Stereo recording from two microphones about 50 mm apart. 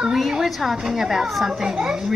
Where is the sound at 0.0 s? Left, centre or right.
Centre.